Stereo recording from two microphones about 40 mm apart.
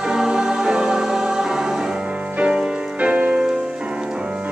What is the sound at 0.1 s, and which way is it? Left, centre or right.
Music, centre.